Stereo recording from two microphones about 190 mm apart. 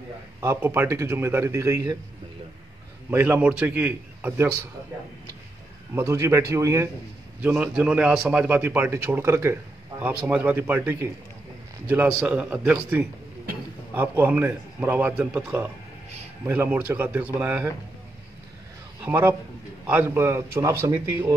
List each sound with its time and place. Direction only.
0.4 s a man's voice: 10° right (ahead or behind)
3.1 s a man's voice: 10° right (ahead or behind)
5.9 s a man's voice: 15° right (ahead or behind)
19.0 s a man's voice: 10° right (ahead or behind)